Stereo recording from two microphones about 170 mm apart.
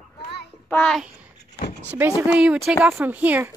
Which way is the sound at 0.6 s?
5° left (ahead or behind).